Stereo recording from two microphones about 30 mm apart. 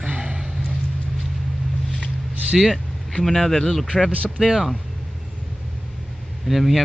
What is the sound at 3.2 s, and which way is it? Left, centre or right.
Speech, centre.